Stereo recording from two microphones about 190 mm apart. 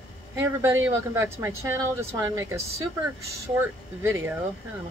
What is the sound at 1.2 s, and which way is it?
Speech, 15° right (ahead or behind).